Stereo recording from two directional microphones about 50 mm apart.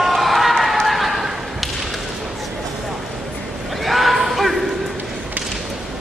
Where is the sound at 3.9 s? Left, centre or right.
Centre.